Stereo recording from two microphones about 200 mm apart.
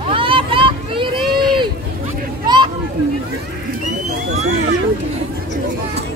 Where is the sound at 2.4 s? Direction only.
20° right (ahead or behind).